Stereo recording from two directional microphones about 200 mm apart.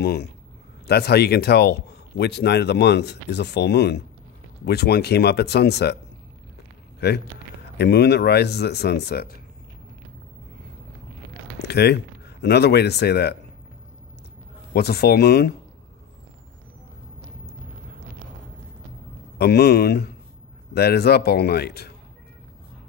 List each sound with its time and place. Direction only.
0.0 s a man's voice: 55° left (ahead or behind)
7.7 s speech: 55° left (ahead or behind)
11.6 s speech: 55° left (ahead or behind)
14.7 s a man's voice: 55° left (ahead or behind)
19.3 s a man's voice: 50° left (ahead or behind)